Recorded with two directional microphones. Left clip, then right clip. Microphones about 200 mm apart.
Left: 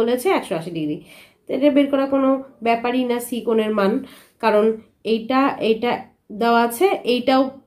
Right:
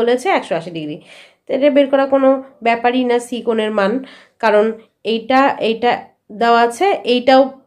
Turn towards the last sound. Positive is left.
turn(degrees=-15)  # may be behind; listen again after turning